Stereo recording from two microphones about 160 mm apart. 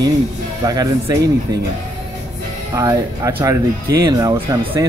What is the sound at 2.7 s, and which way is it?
Speech, 20° right (ahead or behind).